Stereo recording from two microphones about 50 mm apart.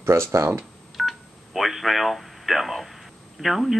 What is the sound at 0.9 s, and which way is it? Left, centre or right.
Speech, centre.